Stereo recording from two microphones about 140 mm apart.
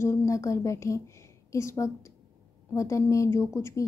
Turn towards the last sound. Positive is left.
turn(degrees=20)  # may be behind; listen again after turning